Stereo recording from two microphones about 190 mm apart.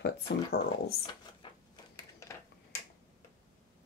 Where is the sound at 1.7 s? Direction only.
20° left (ahead or behind).